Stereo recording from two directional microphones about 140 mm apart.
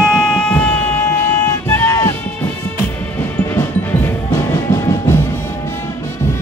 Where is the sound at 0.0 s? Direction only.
5° left (ahead or behind).